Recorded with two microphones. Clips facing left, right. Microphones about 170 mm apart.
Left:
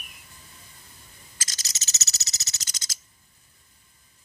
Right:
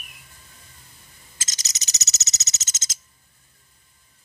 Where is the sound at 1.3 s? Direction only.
20° right (ahead or behind).